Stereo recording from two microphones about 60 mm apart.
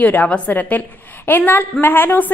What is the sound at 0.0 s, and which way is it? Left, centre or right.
A woman's voice, left.